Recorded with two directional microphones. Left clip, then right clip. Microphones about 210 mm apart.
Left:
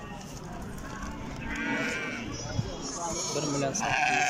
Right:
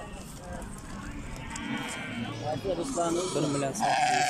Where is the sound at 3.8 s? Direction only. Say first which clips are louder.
Right 2 dB; 25° right (ahead or behind).